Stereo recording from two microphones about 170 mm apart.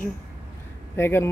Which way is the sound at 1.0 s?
15° left (ahead or behind).